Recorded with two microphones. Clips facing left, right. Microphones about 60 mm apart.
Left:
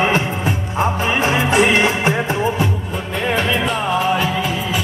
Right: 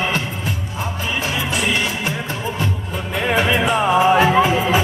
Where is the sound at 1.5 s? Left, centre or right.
Left.